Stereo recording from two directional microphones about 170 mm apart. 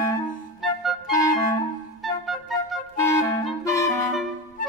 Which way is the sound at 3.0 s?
15° left (ahead or behind).